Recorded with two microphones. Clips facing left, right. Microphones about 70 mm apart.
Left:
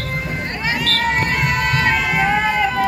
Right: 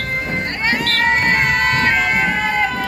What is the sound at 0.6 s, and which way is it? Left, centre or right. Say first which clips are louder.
Crowd: right 2 dB; right.